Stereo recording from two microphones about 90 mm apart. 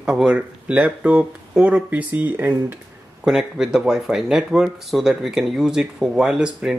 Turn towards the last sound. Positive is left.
turn(degrees=-10)  # may be behind; listen again after turning